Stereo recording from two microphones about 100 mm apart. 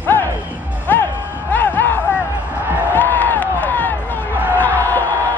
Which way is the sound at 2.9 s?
20° left (ahead or behind).